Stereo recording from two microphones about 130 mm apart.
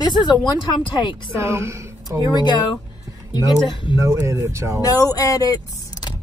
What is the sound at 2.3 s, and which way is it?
Speech, 35° left (ahead or behind).